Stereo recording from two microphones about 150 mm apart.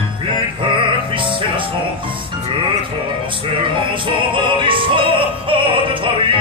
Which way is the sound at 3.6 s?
35° right (ahead or behind).